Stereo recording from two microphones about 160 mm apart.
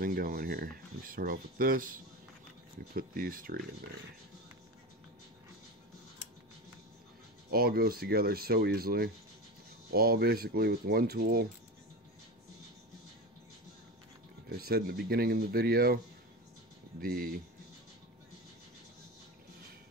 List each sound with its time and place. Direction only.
0.0 s speech: 65° right (ahead or behind)
7.5 s speech: 70° right (ahead or behind)
14.5 s speech: 75° right (ahead or behind)
17.0 s speech: 65° right (ahead or behind)